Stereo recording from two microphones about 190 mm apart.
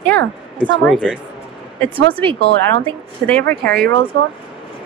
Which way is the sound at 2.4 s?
70° right (ahead or behind).